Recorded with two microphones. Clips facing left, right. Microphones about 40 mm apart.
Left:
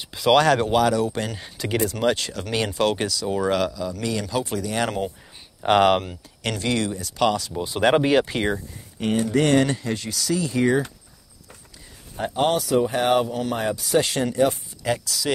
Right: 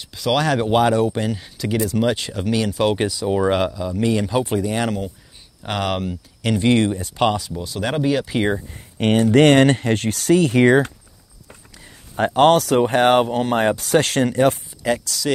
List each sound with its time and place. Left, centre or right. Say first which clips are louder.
0.0 s speech: left 1 dB; centre
0.3 s speech: left 2 dB; centre
0.7 s speech: right 3 dB; right
1.4 s speech: right 2 dB; centre
1.9 s speech: right 3 dB; centre
2.1 s speech: right 4 dB; centre
5.6 s speech: left 7 dB; centre
6.6 s speech: right 8 dB; right
7.5 s speech: left 4 dB; left
8.9 s speech: right 7 dB; right
12.2 s speech: right 8 dB; right
14.8 s speech: right 3 dB; centre